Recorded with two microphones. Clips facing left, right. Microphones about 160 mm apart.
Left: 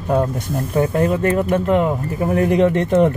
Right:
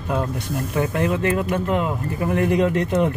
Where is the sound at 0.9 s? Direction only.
35° left (ahead or behind).